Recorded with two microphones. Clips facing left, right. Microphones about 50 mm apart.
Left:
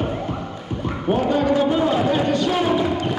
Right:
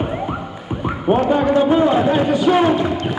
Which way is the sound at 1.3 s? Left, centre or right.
Centre.